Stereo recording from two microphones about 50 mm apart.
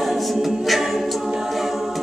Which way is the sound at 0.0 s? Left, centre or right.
Centre.